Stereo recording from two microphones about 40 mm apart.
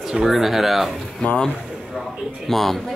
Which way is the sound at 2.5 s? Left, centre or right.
Centre.